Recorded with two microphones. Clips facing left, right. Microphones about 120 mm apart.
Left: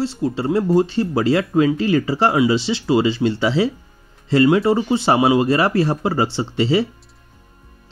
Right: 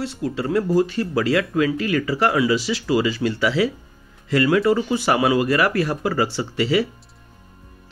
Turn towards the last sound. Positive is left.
turn(degrees=25)  # may be behind; listen again after turning